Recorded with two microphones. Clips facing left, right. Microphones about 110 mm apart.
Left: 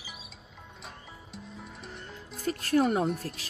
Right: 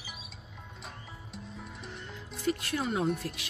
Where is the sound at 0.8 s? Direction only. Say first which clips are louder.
Even; centre (ahead or behind).